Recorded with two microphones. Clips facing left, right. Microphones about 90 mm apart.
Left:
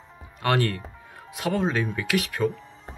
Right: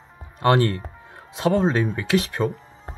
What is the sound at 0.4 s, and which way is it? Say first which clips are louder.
Speech: right 5 dB; 25° right (ahead or behind).